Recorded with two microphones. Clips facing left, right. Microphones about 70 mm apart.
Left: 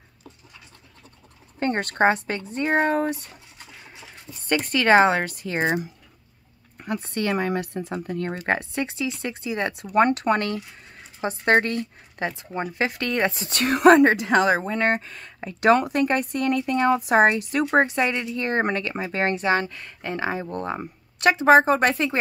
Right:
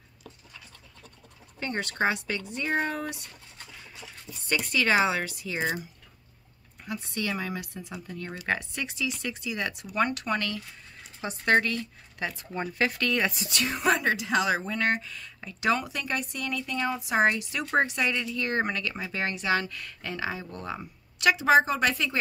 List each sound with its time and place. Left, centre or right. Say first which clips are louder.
1.6 s speech: left 7 dB; left
4.5 s speech: left 7 dB; left
7.0 s speech: left 7 dB; left
13.7 s a woman's voice: left 12 dB; left
14.0 s speech: left 7 dB; left
17.7 s speech: left 4 dB; left